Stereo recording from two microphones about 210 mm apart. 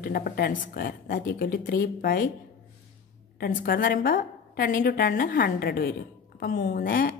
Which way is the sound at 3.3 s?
45° left (ahead or behind).